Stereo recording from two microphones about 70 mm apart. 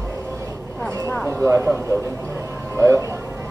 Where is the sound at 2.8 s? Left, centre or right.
Right.